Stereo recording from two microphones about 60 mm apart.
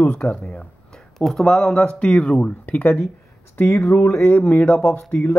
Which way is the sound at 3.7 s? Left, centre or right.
Left.